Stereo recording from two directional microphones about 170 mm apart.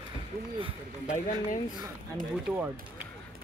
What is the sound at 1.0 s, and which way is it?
Speech, 45° left (ahead or behind).